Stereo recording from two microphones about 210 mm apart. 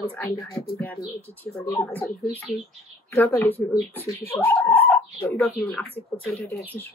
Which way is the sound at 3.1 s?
10° left (ahead or behind).